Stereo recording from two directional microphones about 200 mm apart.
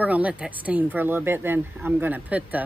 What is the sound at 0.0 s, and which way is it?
Speech, 5° right (ahead or behind).